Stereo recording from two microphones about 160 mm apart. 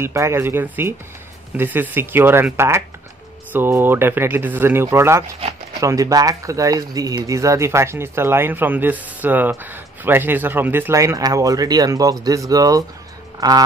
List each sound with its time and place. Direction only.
0.0 s speech: 15° right (ahead or behind)